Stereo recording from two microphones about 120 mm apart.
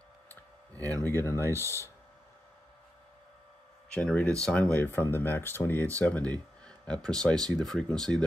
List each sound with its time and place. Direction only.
1.0 s speech: 20° left (ahead or behind)
3.9 s speech: 10° left (ahead or behind)
4.7 s speech: 20° left (ahead or behind)